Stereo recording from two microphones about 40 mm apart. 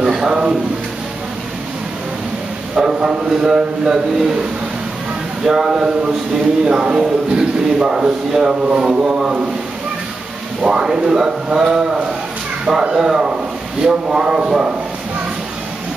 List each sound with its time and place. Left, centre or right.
0.0 s a sound: centre
2.7 s a man's voice: centre
5.4 s a man's voice: centre
10.6 s a man's voice: centre